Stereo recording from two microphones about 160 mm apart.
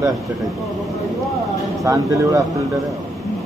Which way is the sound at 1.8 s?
20° right (ahead or behind).